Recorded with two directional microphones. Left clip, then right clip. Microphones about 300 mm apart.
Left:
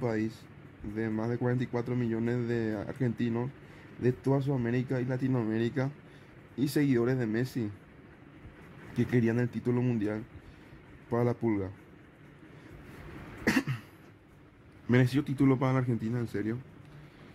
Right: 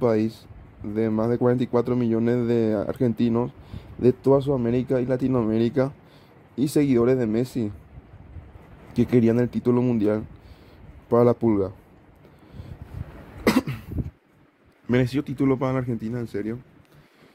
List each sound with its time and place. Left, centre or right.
0.0 s speech: centre
8.9 s speech: centre
13.6 s cough: centre
14.9 s speech: centre